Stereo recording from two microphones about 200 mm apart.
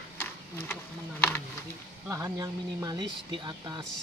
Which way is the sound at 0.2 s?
10° left (ahead or behind).